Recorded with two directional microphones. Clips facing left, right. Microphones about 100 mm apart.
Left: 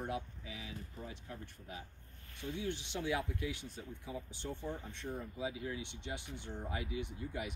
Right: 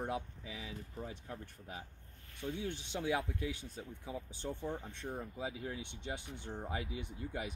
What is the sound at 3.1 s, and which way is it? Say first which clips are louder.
Speech: right 1 dB; 40° right (ahead or behind).